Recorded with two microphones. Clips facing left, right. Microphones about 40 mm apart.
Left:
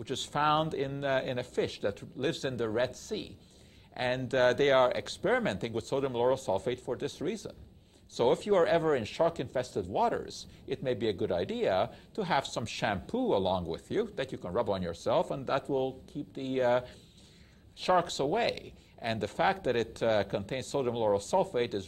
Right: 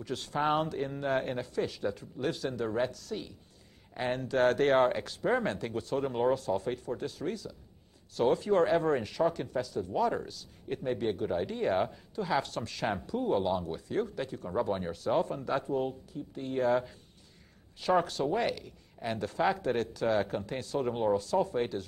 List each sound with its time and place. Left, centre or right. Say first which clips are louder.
0.0 s speech: left 1 dB; left
6.0 s speech: even; centre
6.3 s speech: even; left
14.6 s speech: even; left
14.9 s speech: even; left
20.9 s speech: even; left
21.2 s speech: left 1 dB; left